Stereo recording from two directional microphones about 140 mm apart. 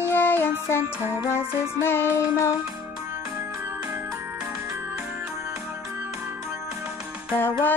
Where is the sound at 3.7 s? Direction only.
15° right (ahead or behind).